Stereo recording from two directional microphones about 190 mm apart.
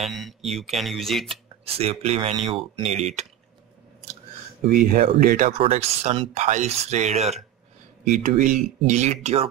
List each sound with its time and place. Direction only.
0.0 s speech: centre (ahead or behind)
1.3 s speech: 30° right (ahead or behind)
4.6 s speech: 45° right (ahead or behind)
5.6 s speech: 35° right (ahead or behind)